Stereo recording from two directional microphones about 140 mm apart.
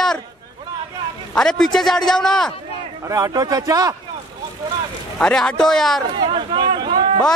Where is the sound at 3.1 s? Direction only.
25° right (ahead or behind).